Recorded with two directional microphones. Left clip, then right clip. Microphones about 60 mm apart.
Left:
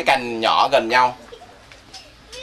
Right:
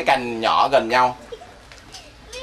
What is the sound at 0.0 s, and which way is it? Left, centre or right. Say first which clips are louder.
Speech: left 1 dB; centre.